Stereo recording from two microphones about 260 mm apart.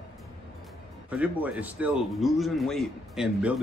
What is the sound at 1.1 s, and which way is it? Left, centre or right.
Speech, centre.